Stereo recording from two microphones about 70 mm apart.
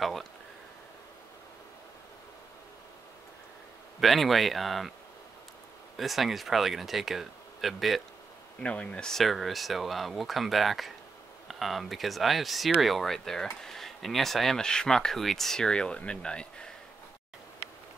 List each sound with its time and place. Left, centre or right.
0.0 s speech: centre
4.0 s speech: centre
5.9 s speech: centre
8.6 s speech: centre